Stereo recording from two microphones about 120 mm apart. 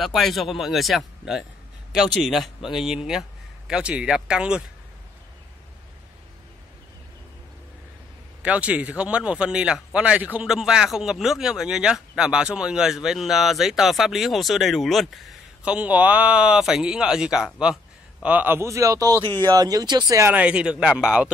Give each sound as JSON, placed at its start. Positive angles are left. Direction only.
{"t": 0.0, "sound": "a man's voice", "side_deg": 0}
{"t": 8.4, "sound": "a man's voice", "side_deg": -10}
{"t": 20.3, "sound": "speech", "side_deg": -10}